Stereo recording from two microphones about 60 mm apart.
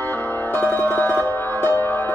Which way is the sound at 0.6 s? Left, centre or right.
Left.